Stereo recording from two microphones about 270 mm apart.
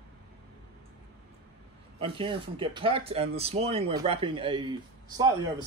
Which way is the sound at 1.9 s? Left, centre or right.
Centre.